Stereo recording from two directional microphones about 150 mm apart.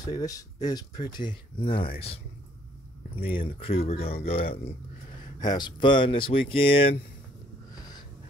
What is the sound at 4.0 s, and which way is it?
Speech, 90° left.